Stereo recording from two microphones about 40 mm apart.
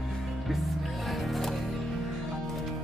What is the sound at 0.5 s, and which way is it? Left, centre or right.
Music, centre.